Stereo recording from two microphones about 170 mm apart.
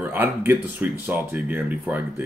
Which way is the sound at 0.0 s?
10° right (ahead or behind).